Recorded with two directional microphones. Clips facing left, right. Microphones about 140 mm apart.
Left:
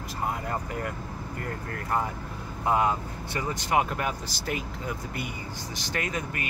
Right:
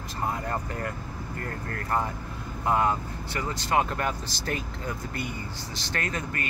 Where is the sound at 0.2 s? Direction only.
10° left (ahead or behind).